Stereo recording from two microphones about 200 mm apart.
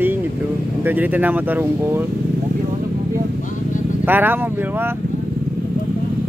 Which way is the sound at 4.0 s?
10° right (ahead or behind).